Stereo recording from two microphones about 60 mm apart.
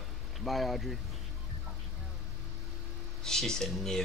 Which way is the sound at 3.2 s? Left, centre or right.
Centre.